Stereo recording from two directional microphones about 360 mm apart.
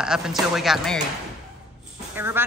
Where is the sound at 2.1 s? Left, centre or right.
Centre.